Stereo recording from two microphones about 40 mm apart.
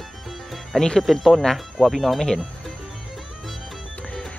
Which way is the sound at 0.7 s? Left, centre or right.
Centre.